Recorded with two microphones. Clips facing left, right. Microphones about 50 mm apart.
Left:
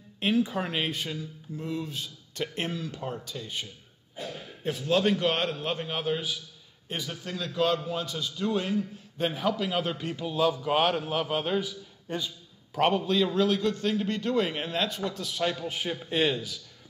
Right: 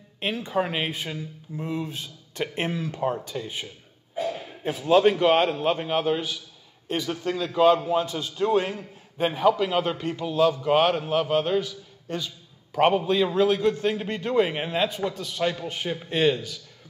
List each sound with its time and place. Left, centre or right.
0.2 s a man's voice: centre
1.2 s a man's voice: right
7.8 s a man's voice: right
9.2 s a man's voice: centre
12.7 s a man's voice: centre
15.1 s a man's voice: centre